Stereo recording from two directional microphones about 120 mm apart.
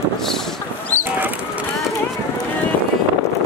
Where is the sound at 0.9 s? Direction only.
15° left (ahead or behind).